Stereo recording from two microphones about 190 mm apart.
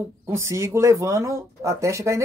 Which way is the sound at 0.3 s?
15° right (ahead or behind).